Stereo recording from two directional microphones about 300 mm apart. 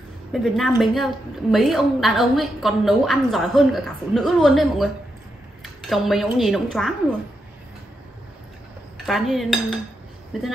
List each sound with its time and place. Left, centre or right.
0.3 s a woman's voice: centre
5.6 s cutlery: centre
8.9 s a woman's voice: centre